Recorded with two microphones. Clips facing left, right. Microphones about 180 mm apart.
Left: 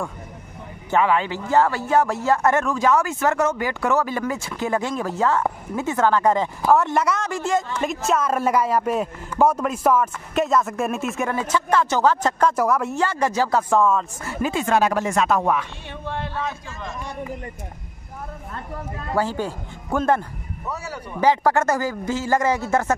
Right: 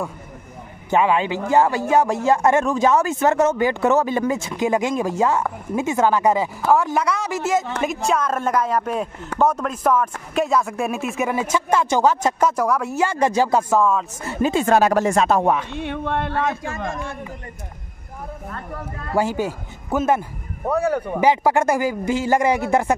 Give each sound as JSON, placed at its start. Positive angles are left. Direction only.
{"t": 0.8, "sound": "speech", "side_deg": -15}
{"t": 12.5, "sound": "speech", "side_deg": 5}
{"t": 13.0, "sound": "speech", "side_deg": -15}
{"t": 13.7, "sound": "speech", "side_deg": 0}
{"t": 14.2, "sound": "speech", "side_deg": -25}
{"t": 15.7, "sound": "speech", "side_deg": -60}
{"t": 19.1, "sound": "speech", "side_deg": -10}
{"t": 20.6, "sound": "speech", "side_deg": -55}
{"t": 21.2, "sound": "speech", "side_deg": -15}